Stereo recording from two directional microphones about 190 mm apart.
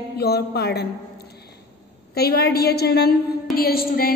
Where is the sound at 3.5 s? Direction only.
50° left (ahead or behind).